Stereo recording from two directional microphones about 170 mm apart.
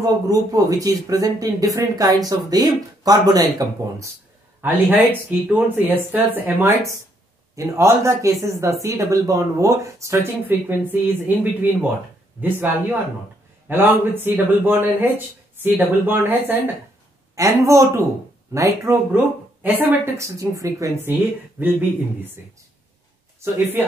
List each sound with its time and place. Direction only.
0.0 s speech: 20° right (ahead or behind)
6.1 s speech: 10° right (ahead or behind)